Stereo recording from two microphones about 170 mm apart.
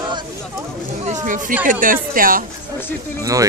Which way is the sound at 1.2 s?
50° right (ahead or behind).